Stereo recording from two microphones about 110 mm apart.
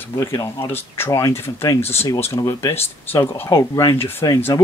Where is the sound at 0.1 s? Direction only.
25° left (ahead or behind).